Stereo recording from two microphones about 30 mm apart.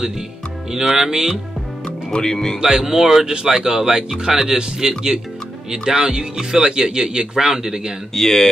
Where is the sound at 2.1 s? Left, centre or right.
Left.